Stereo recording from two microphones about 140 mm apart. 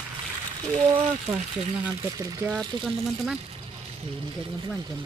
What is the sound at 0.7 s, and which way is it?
Speech, 25° right (ahead or behind).